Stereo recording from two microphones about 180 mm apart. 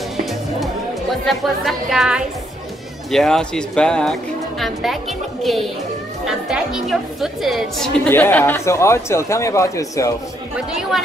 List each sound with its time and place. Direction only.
0.2 s music: centre (ahead or behind)
1.2 s speech: centre (ahead or behind); by 10.1 s 15° left (ahead or behind)